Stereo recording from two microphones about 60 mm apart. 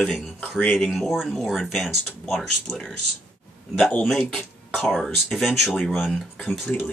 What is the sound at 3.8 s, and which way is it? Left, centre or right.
Speech, left.